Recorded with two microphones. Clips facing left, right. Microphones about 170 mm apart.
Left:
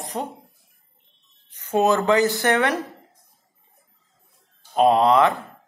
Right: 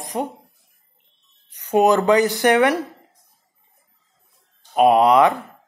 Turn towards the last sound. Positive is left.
turn(degrees=-15)  # may be behind; listen again after turning